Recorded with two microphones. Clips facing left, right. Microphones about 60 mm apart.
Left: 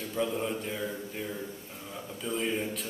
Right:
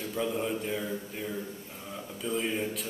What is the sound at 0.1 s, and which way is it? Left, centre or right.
A man's voice, centre.